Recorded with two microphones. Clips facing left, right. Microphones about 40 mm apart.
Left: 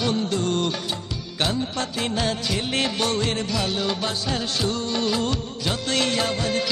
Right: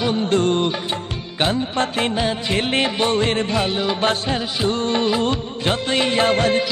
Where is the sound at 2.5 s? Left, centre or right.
Right.